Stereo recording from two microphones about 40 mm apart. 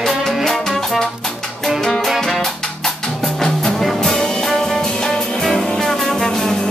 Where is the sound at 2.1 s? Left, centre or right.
Centre.